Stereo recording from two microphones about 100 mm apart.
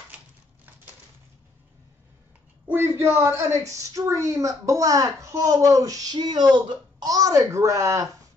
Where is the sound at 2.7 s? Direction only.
25° right (ahead or behind).